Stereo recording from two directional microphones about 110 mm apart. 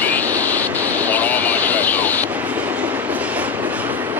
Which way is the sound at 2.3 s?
15° right (ahead or behind).